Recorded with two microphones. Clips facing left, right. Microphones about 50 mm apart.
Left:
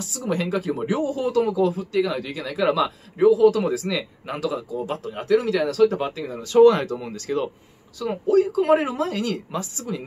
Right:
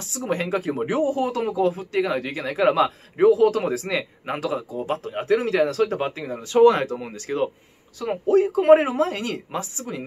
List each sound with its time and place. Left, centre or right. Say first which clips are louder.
0.0 s speech: even; right